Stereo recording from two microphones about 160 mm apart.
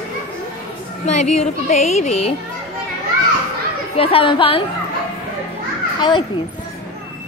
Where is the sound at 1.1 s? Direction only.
45° left (ahead or behind).